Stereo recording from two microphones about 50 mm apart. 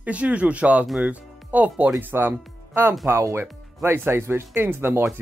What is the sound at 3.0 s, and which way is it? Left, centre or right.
Speech, right.